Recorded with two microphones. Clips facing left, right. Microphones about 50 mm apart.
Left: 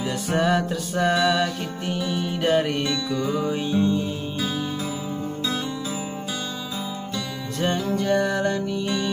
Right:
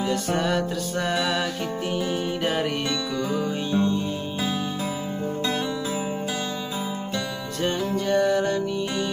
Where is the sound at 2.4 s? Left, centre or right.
Centre.